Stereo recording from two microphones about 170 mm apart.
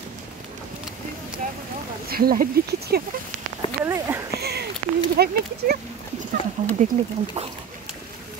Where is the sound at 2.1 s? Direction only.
60° right (ahead or behind).